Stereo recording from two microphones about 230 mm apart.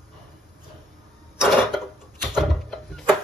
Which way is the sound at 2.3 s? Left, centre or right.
Centre.